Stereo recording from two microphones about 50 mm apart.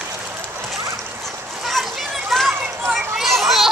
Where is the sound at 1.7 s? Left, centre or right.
Centre.